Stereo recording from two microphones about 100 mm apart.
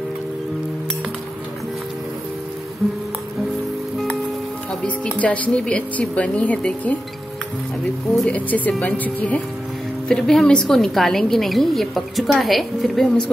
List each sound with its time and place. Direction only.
4.8 s speech: 15° left (ahead or behind)
8.3 s speech: 15° left (ahead or behind)
10.0 s a woman's voice: 5° left (ahead or behind)